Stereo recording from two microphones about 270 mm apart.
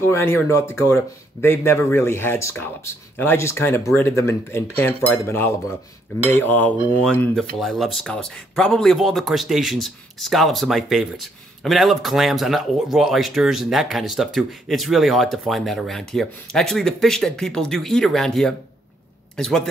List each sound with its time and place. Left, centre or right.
0.0 s speech: centre